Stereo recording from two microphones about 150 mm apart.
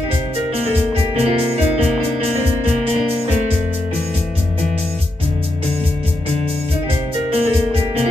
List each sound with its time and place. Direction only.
0.7 s music: 40° right (ahead or behind)
7.2 s music: 40° right (ahead or behind)